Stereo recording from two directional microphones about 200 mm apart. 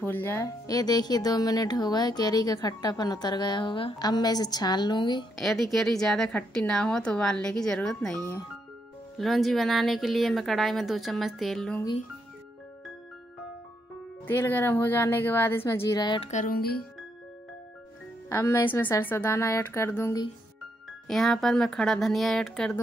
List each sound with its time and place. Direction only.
0.0 s speech: 10° left (ahead or behind)
5.4 s a woman's voice: centre (ahead or behind)
14.2 s speech: 10° left (ahead or behind)
16.3 s music: 40° left (ahead or behind)
18.3 s speech: 15° left (ahead or behind)
21.1 s a woman's voice: centre (ahead or behind)